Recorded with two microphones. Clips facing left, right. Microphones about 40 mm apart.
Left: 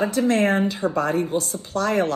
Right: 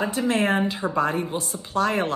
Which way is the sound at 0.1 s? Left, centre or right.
Right.